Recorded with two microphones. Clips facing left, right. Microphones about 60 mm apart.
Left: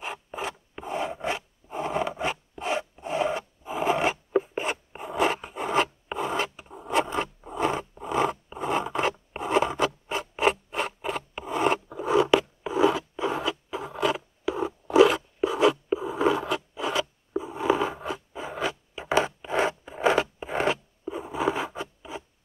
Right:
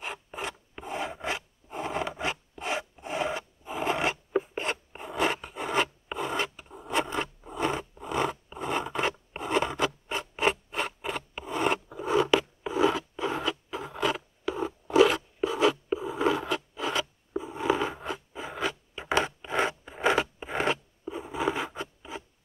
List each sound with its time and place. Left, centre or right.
0.0 s filing: centre
1.7 s zipper: centre
3.0 s filing: centre
7.9 s zipper: centre
16.0 s a sound: centre
19.8 s scissors: centre